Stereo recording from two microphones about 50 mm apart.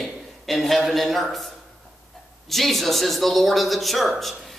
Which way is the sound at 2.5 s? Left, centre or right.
Centre.